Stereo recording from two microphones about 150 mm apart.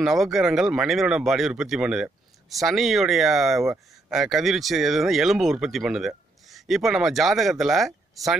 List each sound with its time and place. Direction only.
0.0 s speech: centre (ahead or behind)